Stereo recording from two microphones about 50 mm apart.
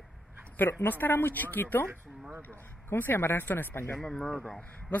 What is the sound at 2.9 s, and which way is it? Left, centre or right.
Speech, left.